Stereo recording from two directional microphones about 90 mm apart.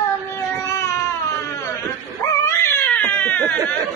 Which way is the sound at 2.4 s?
25° left (ahead or behind).